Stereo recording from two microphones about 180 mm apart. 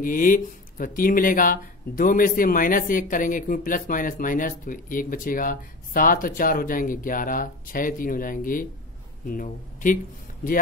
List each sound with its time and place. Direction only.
0.0 s speech: 50° left (ahead or behind)